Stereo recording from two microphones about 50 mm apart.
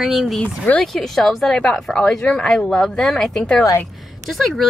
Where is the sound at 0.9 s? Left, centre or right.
Centre.